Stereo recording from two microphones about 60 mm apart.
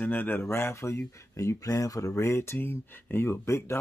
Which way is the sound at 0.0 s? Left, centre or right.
Left.